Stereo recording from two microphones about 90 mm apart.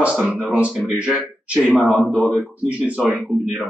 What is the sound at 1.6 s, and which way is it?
Speech, centre (ahead or behind).